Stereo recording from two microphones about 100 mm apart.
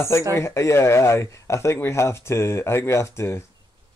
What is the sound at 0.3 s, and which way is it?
Speech, 25° left (ahead or behind).